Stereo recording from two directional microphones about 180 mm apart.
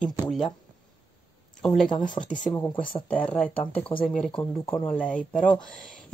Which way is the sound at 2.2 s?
25° left (ahead or behind).